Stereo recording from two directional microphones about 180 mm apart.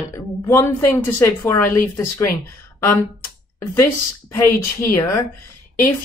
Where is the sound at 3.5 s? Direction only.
15° left (ahead or behind).